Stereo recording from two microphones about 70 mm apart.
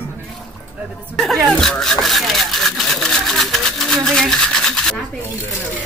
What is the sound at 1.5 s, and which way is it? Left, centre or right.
Speech, centre.